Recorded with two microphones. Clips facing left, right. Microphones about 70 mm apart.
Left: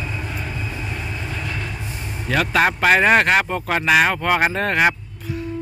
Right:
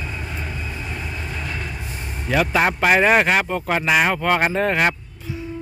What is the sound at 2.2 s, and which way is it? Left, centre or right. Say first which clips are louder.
Speech: even; centre.